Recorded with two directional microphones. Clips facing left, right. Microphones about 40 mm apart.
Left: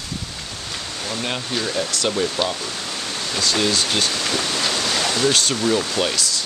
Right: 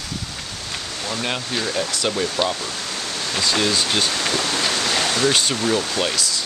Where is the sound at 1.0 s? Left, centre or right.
Centre.